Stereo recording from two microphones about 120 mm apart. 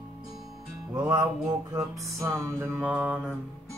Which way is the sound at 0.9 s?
35° right (ahead or behind).